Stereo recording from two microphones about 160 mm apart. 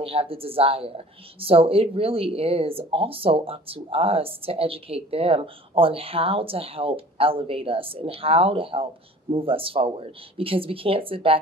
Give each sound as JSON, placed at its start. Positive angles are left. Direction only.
{"t": 0.0, "sound": "a woman's voice", "side_deg": -35}